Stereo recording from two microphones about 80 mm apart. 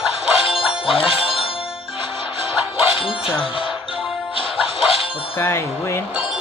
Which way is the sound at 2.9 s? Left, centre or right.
Left.